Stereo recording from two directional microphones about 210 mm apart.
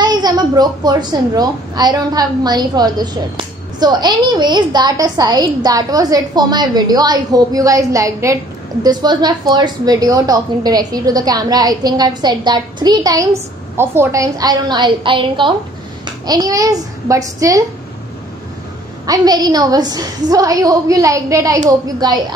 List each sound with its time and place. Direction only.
0.0 s a child's voice: 20° right (ahead or behind)
19.0 s a woman's voice: 20° right (ahead or behind)